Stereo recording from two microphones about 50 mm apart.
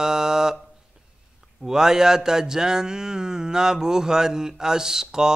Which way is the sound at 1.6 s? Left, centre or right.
Centre.